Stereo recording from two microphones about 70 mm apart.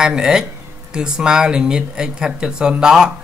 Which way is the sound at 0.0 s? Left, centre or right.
Centre.